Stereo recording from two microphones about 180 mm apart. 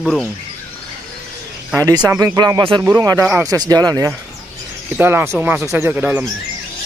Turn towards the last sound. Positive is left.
turn(degrees=-10)  # may be behind; listen again after turning